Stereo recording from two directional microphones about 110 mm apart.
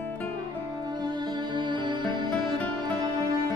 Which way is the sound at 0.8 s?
40° right (ahead or behind).